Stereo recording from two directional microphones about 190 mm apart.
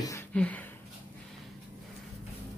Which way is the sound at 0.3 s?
5° left (ahead or behind).